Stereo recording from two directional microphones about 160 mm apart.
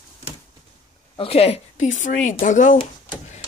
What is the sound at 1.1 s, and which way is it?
Speech, 35° left (ahead or behind).